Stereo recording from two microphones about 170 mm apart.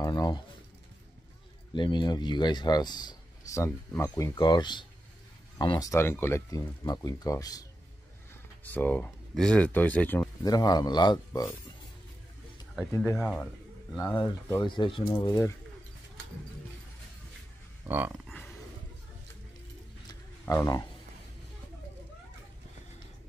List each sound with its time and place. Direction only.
0.0 s a sound: 20° left (ahead or behind)
1.7 s a man's voice: 25° left (ahead or behind)
8.6 s speech: 10° left (ahead or behind); by 11.4 s 25° left (ahead or behind)
12.9 s a man's voice: 15° left (ahead or behind)
13.9 s a man's voice: 25° left (ahead or behind)
17.8 s speech: 10° right (ahead or behind)
20.1 s a sound: 20° left (ahead or behind)